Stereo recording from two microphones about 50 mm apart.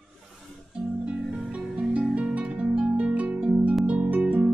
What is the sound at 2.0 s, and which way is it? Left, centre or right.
Music, right.